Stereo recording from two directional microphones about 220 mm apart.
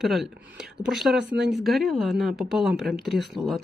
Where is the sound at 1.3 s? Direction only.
50° right (ahead or behind).